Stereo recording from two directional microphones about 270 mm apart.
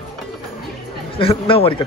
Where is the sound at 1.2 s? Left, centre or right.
Left.